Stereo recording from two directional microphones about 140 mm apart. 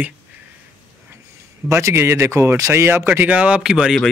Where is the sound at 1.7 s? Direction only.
20° right (ahead or behind).